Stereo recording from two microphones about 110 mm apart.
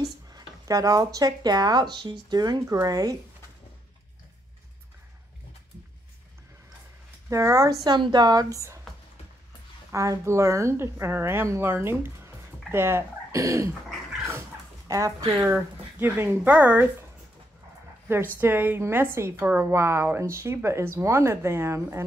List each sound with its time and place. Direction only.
0.3 s speech: 35° right (ahead or behind)
7.2 s speech: 25° right (ahead or behind)
9.9 s a woman's voice: 25° right (ahead or behind)
14.9 s a woman's voice: 30° right (ahead or behind); by 16.8 s 15° right (ahead or behind)
18.0 s a woman's voice: 20° right (ahead or behind)